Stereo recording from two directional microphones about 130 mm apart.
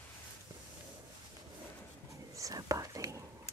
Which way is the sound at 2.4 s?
25° right (ahead or behind).